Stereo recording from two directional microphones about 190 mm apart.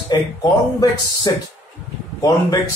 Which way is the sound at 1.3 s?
20° left (ahead or behind).